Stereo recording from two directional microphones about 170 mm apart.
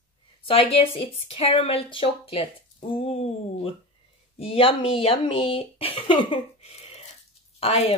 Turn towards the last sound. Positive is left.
turn(degrees=35)  # may be behind; listen again after turning